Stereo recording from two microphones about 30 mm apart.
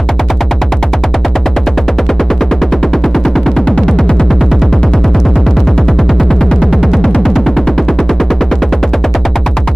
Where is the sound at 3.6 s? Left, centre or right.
Centre.